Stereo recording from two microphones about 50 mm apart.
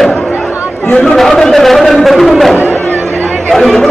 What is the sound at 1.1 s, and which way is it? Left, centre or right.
A man's voice, centre.